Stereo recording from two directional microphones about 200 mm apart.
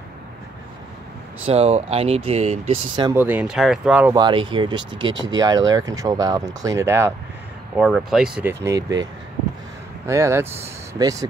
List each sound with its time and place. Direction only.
1.4 s speech: 30° right (ahead or behind)
3.0 s speech: 10° right (ahead or behind)
4.1 s speech: 25° right (ahead or behind)
10.0 s speech: 15° right (ahead or behind)